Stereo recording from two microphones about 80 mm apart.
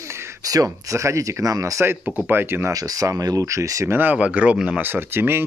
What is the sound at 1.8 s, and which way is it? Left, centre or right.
Speech, right.